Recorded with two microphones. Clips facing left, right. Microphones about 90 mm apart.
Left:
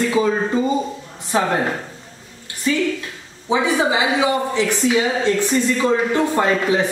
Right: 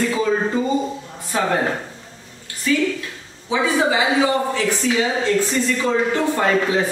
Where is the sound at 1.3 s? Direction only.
25° left (ahead or behind).